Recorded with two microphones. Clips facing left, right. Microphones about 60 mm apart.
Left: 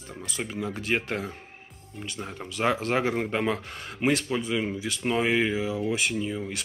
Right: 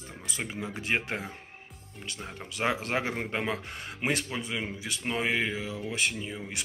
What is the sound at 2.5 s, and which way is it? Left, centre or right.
Speech, centre.